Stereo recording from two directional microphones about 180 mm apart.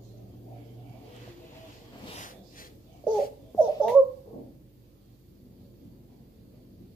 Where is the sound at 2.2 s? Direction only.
45° left (ahead or behind).